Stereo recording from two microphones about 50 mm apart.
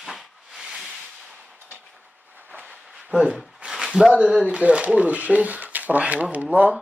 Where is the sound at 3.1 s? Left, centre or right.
Centre.